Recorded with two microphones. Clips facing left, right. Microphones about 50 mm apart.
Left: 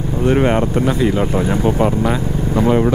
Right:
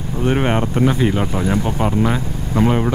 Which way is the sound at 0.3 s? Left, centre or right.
Centre.